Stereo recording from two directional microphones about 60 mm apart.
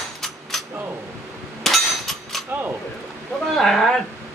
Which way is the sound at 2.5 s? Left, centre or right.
Right.